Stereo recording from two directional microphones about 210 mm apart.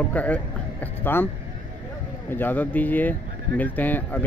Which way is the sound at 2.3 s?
10° left (ahead or behind).